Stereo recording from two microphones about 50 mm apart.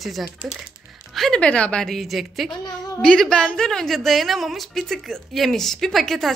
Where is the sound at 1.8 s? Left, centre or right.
Centre.